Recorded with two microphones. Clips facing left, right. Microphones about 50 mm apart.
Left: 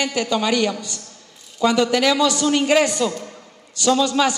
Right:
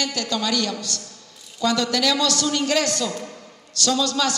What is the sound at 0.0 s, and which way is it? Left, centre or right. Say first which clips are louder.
A man's voice: left 4 dB; centre.